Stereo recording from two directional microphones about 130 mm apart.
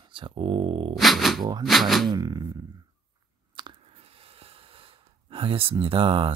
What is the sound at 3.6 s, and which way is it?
Biting, 35° right (ahead or behind).